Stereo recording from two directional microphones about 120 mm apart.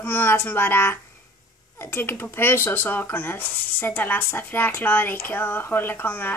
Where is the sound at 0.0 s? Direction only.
20° left (ahead or behind).